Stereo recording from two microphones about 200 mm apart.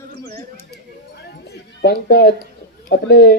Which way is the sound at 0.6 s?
55° left (ahead or behind).